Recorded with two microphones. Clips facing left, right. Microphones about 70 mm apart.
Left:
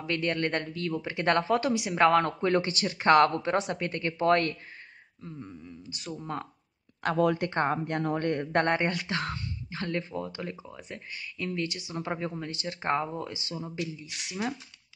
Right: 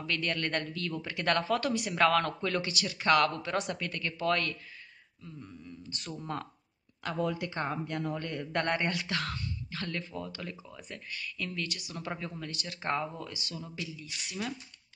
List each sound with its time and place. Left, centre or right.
0.0 s speech: left
5.5 s speech: centre
7.0 s speech: left